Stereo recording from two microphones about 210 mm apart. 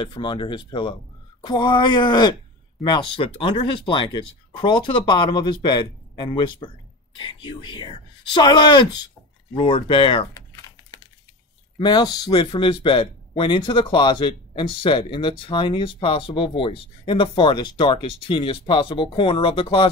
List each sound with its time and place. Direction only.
0.0 s speech: 20° left (ahead or behind)
10.3 s typing: 15° left (ahead or behind)
11.8 s speech: 20° left (ahead or behind)